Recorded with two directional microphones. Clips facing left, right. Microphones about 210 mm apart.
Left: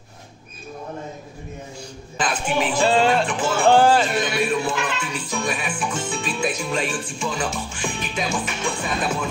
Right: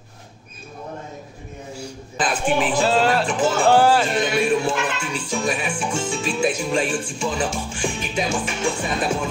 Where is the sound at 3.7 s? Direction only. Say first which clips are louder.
Left 1 dB; 5° right (ahead or behind).